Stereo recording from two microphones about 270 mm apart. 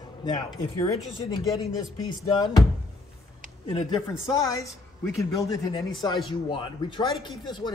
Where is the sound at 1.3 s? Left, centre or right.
Centre.